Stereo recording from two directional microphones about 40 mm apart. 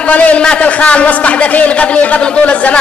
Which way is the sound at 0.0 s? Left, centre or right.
Left.